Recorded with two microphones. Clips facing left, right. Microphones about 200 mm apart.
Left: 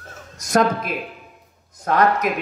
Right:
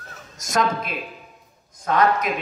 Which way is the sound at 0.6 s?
50° left (ahead or behind).